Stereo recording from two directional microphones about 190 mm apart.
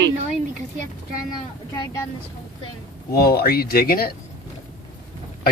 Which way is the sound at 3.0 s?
55° left (ahead or behind).